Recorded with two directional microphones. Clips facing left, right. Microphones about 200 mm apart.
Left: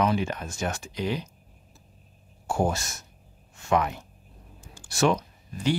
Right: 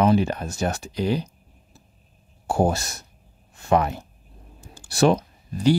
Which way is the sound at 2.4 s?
35° right (ahead or behind).